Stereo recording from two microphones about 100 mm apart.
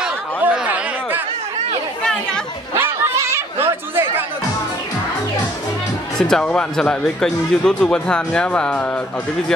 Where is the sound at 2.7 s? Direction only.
25° right (ahead or behind).